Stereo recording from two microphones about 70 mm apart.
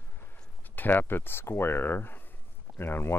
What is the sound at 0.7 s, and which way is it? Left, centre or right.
Speech, left.